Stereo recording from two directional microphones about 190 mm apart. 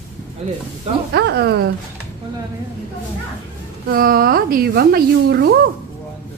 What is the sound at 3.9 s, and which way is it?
A woman's voice, 50° right (ahead or behind).